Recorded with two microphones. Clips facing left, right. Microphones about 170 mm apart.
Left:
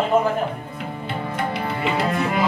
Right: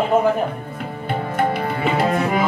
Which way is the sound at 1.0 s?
50° right (ahead or behind).